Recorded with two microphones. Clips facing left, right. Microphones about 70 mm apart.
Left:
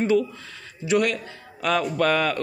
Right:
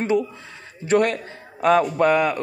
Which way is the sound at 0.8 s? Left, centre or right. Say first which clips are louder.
Right 3 dB; right.